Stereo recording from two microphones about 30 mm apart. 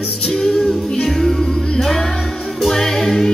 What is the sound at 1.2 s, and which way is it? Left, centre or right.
Music, centre.